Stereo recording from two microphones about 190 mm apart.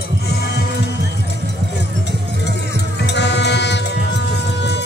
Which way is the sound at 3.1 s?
65° left (ahead or behind).